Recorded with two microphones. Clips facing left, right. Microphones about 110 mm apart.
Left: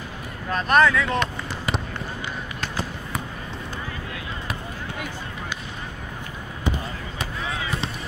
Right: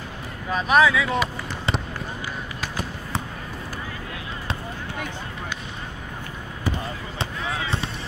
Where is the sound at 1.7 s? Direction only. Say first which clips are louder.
Right 1 dB; 30° right (ahead or behind).